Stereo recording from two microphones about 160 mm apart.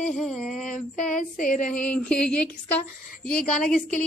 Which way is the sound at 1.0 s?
55° left (ahead or behind).